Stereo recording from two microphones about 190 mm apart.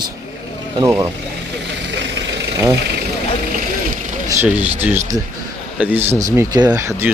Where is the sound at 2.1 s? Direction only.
70° right (ahead or behind).